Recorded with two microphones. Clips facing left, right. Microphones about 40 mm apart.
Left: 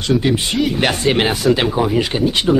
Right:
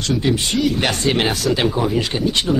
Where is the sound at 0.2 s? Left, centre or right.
Centre.